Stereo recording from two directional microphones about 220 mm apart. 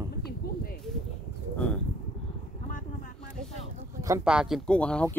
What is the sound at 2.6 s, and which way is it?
Vehicle, 35° left (ahead or behind).